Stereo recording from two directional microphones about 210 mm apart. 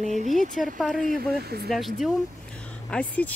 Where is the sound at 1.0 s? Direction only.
45° right (ahead or behind).